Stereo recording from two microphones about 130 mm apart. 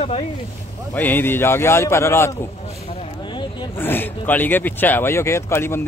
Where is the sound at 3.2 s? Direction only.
35° left (ahead or behind).